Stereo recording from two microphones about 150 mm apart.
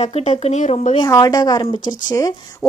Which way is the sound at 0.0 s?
50° left (ahead or behind).